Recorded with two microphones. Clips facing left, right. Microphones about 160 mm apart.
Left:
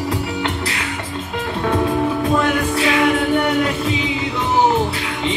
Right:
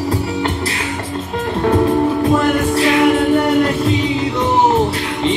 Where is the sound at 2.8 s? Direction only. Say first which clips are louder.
Right 4 dB; centre (ahead or behind).